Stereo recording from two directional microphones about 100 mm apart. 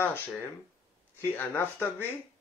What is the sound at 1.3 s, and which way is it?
Speech, 20° left (ahead or behind).